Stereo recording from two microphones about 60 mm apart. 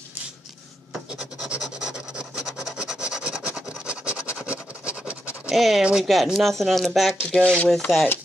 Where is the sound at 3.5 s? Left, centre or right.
Centre.